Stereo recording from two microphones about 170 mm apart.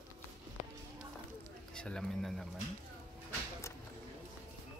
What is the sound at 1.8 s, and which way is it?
Speech, 5° left (ahead or behind).